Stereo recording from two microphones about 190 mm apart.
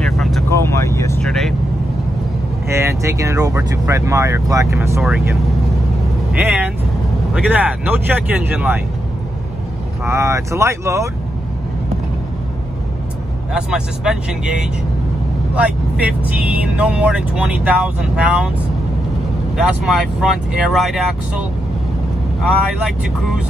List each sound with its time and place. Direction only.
0.0 s vehicle: centre (ahead or behind)
0.5 s speech: 15° left (ahead or behind)
1.2 s speech: centre (ahead or behind)
2.7 s speech: 15° right (ahead or behind)
5.0 s speech: 5° right (ahead or behind)
10.0 s speech: 15° right (ahead or behind)
13.5 s speech: 5° right (ahead or behind)
19.5 s speech: centre (ahead or behind)